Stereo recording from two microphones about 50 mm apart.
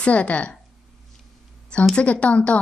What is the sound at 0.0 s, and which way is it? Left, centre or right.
Speech, left.